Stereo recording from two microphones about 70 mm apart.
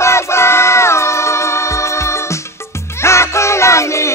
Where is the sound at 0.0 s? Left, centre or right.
Left.